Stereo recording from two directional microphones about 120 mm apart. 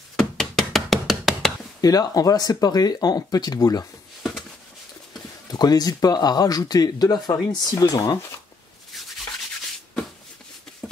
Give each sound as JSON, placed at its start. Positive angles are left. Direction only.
{"t": 0.1, "sound": "knock", "side_deg": 5}
{"t": 1.8, "sound": "speech", "side_deg": 30}
{"t": 5.5, "sound": "speech", "side_deg": 35}